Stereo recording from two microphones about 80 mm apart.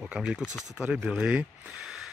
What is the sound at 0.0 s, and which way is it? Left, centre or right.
Speech, centre.